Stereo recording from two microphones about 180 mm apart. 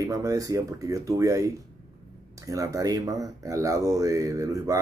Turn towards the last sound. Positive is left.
turn(degrees=-15)  # may be behind; listen again after turning